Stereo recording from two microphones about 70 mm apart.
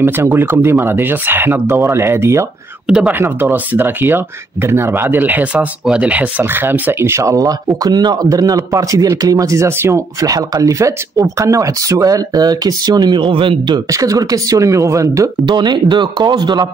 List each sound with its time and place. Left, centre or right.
0.0 s speech: right
7.3 s speech: right
9.7 s speech: right
10.2 s speech: right
13.8 s speech: right
15.5 s speech: right